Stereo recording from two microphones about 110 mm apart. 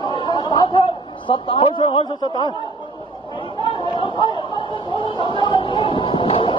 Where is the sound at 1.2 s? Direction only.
50° left (ahead or behind).